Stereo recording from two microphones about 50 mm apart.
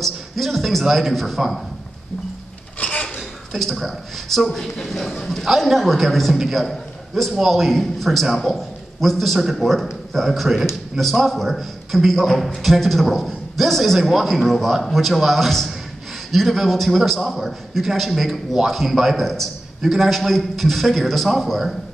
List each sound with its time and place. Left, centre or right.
0.0 s a man's voice: centre
2.8 s a sound: left
3.2 s a man's voice: centre